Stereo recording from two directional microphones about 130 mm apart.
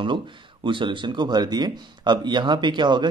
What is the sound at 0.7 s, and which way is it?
A man's voice, 40° right (ahead or behind).